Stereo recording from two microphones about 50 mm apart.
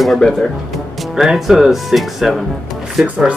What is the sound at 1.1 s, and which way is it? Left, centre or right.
Speech, centre.